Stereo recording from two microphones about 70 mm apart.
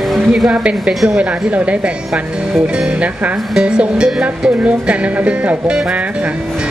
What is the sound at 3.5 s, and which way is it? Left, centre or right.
Speech, centre.